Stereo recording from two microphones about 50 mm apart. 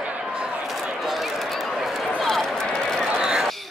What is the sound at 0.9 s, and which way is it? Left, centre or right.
Run, centre.